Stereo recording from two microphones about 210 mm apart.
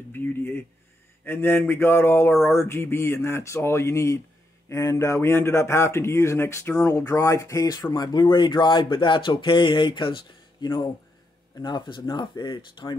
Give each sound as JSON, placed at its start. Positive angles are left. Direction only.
{"t": 0.1, "sound": "a man's voice", "side_deg": 10}